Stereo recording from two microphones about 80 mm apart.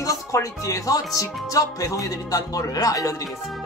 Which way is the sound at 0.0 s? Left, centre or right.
Left.